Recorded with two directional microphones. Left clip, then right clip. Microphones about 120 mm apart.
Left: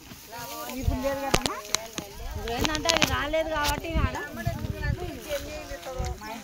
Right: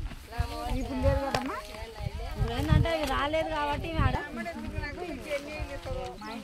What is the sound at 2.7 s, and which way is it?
Speech, 10° left (ahead or behind).